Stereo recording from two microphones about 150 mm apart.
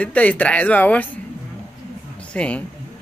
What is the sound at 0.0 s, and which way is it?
Speech, 10° left (ahead or behind).